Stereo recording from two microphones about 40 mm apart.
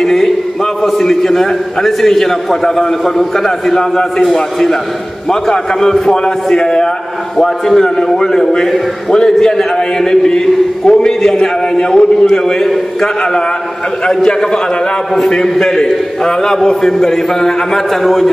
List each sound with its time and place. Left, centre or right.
0.0 s chant: centre
0.8 s a man's voice: centre